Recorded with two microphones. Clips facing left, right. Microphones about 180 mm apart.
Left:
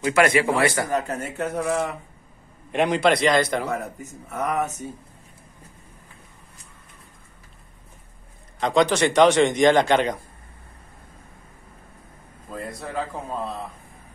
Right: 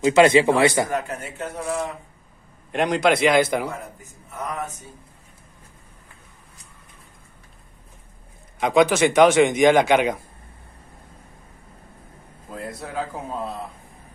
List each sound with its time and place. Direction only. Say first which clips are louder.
0.0 s a man's voice: right 4 dB; 25° right (ahead or behind)
1.3 s speech: left 4 dB; 65° left (ahead or behind)
2.7 s a man's voice: even; centre (ahead or behind)
4.3 s speech: left 5 dB; 70° left (ahead or behind)
8.5 s a man's voice: right 2 dB; 5° right (ahead or behind)
12.4 s a man's voice: even; 5° right (ahead or behind)